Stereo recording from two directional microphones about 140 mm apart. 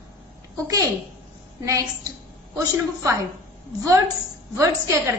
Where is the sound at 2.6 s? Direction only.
25° right (ahead or behind).